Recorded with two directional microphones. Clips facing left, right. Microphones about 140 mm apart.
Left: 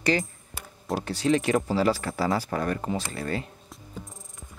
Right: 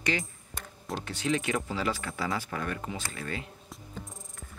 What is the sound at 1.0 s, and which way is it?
Speech, 35° left (ahead or behind).